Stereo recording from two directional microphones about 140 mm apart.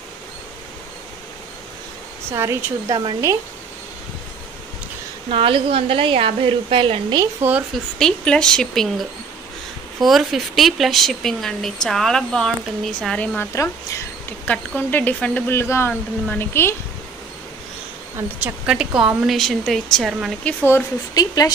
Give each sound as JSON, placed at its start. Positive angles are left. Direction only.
{"t": 2.3, "sound": "speech", "side_deg": -20}
{"t": 5.3, "sound": "a woman's voice", "side_deg": -40}
{"t": 8.0, "sound": "speech", "side_deg": 5}
{"t": 13.6, "sound": "a woman's voice", "side_deg": 20}
{"t": 14.4, "sound": "speech", "side_deg": 10}
{"t": 18.4, "sound": "speech", "side_deg": -5}
{"t": 20.4, "sound": "speech", "side_deg": 15}
{"t": 21.1, "sound": "a woman's voice", "side_deg": 25}